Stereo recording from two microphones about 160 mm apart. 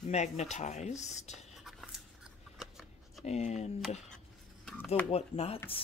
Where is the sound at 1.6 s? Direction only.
5° right (ahead or behind).